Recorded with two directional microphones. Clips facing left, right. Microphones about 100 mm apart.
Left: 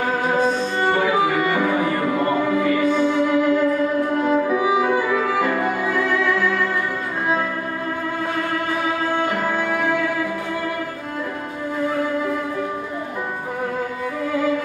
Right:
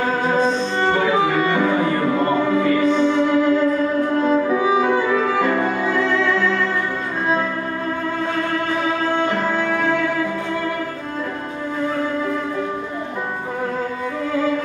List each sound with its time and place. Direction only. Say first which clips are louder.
0.5 s music: right 1 dB; 25° right (ahead or behind)
5.4 s music: right 2 dB; 25° right (ahead or behind)
6.4 s music: right 1 dB; 10° left (ahead or behind)
9.5 s music: right 1 dB; 15° left (ahead or behind)